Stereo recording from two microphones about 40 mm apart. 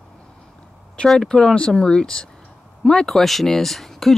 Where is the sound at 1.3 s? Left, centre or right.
Centre.